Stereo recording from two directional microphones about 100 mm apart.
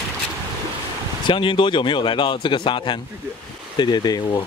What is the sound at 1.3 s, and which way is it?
A man's voice, 55° left (ahead or behind).